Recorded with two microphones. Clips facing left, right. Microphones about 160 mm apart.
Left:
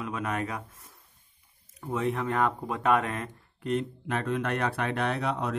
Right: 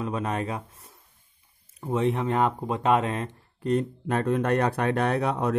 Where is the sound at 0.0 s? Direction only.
30° right (ahead or behind).